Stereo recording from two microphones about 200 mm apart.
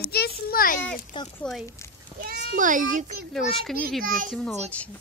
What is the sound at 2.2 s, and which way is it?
Speech, 55° right (ahead or behind).